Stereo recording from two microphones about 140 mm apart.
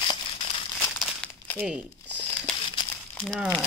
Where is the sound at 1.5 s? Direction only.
10° left (ahead or behind).